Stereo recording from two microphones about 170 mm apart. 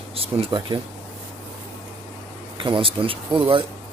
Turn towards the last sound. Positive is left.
turn(degrees=-30)  # may be behind; listen again after turning